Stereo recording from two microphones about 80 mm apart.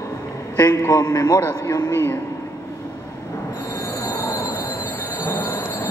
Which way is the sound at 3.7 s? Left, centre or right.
Left.